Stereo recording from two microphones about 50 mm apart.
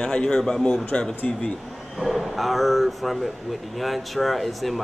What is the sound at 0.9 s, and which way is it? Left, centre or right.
Speech, left.